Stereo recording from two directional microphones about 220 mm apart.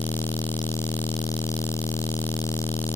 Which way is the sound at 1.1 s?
25° left (ahead or behind).